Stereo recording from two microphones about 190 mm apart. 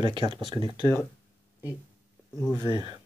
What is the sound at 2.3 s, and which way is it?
Speech, centre (ahead or behind).